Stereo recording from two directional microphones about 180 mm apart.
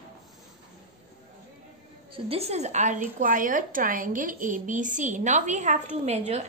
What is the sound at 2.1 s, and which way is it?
A woman's voice, 35° right (ahead or behind).